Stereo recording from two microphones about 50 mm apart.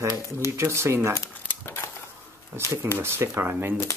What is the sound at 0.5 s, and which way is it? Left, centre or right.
Speech, right.